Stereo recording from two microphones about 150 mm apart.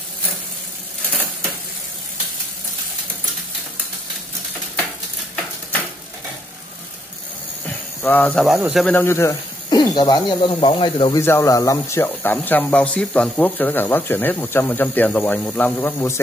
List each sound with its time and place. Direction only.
7.6 s a sound: 10° left (ahead or behind)
8.5 s speech: 5° right (ahead or behind)
8.8 s speech: 15° left (ahead or behind); by 11.1 s 35° left (ahead or behind)
11.1 s speech: 20° left (ahead or behind)